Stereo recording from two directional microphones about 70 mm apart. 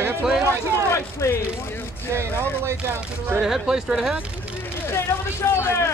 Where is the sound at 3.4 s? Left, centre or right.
Centre.